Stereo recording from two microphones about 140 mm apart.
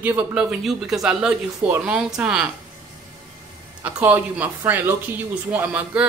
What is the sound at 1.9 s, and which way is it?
Speech, 5° right (ahead or behind).